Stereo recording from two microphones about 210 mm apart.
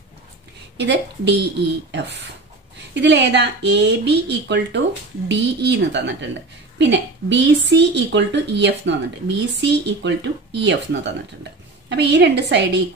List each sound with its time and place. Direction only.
0.7 s a woman's voice: 55° right (ahead or behind)